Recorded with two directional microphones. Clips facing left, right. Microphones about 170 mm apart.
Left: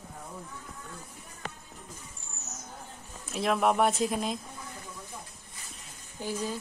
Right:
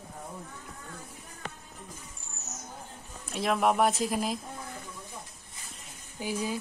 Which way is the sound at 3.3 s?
Centre (ahead or behind).